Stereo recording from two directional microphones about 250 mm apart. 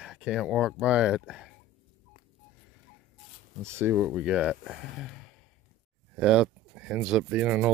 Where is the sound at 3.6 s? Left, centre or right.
Centre.